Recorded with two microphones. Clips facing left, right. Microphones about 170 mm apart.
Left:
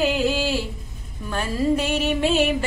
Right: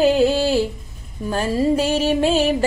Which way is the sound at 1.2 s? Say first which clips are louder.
Right 4 dB; 30° right (ahead or behind).